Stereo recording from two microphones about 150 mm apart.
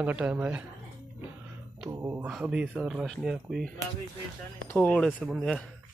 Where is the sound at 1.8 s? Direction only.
20° right (ahead or behind).